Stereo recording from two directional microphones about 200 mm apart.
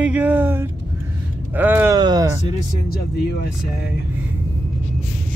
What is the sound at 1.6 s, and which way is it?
Speech, 10° right (ahead or behind).